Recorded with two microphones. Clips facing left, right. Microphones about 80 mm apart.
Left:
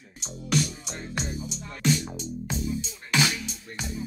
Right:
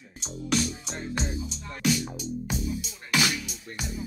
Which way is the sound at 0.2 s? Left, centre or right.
Centre.